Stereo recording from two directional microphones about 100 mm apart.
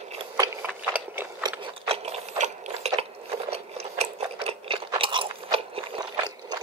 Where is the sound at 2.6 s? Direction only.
90° right; by 6.0 s 70° right (ahead or behind).